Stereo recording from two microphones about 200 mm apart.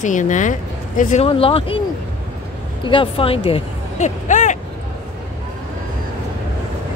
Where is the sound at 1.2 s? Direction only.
30° left (ahead or behind).